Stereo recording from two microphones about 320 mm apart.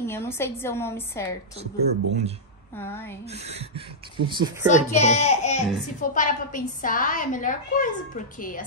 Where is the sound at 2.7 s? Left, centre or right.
Centre.